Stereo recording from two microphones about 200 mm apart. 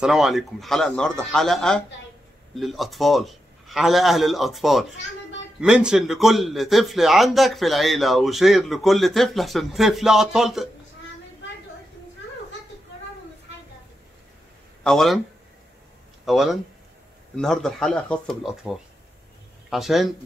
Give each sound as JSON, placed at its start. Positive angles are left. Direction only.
{"t": 0.0, "sound": "a man's voice", "side_deg": 0}
{"t": 14.8, "sound": "speech", "side_deg": 0}
{"t": 16.3, "sound": "a man's voice", "side_deg": 0}